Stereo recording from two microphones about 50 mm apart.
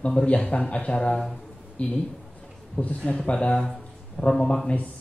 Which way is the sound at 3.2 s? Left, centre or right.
Centre.